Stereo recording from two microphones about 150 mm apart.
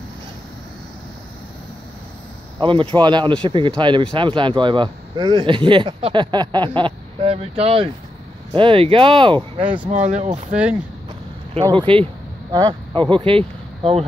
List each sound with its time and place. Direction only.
2.6 s speech: 35° right (ahead or behind)
9.8 s speech: 50° right (ahead or behind)
11.7 s speech: 35° right (ahead or behind)